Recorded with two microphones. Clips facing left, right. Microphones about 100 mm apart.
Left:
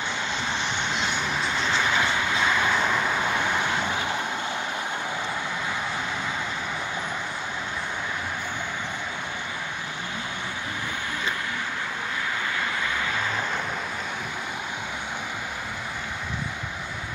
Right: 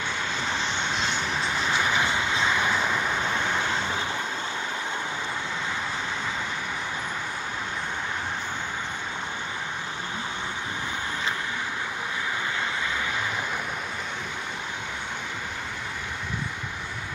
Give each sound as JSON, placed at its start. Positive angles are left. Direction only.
{"t": 1.8, "sound": "vehicle", "side_deg": -15}
{"t": 2.9, "sound": "vehicle", "side_deg": 10}